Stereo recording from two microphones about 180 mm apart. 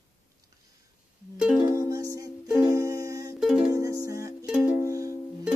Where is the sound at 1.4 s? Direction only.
5° right (ahead or behind).